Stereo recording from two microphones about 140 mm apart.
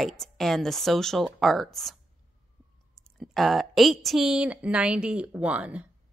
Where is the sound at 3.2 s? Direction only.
Centre (ahead or behind).